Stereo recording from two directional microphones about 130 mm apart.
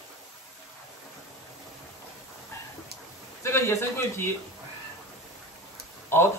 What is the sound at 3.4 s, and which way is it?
Speech, 20° left (ahead or behind).